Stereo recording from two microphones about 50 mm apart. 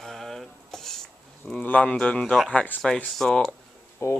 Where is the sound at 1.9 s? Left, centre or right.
Centre.